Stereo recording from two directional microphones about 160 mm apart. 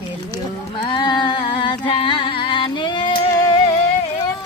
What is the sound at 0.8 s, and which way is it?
Music, 30° left (ahead or behind).